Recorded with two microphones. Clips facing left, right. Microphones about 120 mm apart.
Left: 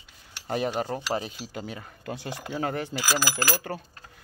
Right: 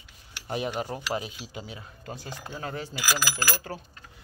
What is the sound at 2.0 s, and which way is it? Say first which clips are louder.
Speech: left 5 dB; 70° left (ahead or behind).